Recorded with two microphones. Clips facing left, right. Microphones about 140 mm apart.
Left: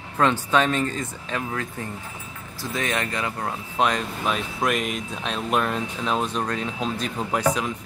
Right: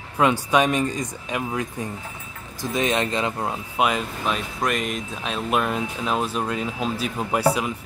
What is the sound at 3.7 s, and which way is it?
A man's voice, 5° right (ahead or behind).